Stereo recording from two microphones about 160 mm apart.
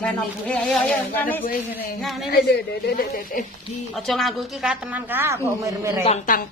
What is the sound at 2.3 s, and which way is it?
Speech, 85° left.